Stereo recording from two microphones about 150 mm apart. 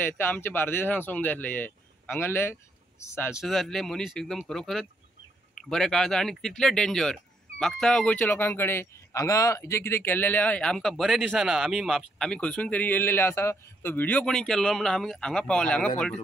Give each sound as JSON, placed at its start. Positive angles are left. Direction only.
{"t": 0.0, "sound": "speech", "side_deg": 15}
{"t": 3.3, "sound": "speech", "side_deg": 0}